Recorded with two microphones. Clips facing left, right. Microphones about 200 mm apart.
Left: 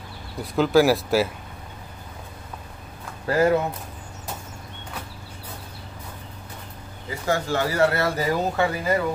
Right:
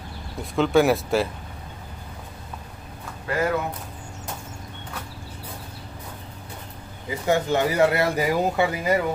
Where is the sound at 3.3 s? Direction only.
30° left (ahead or behind).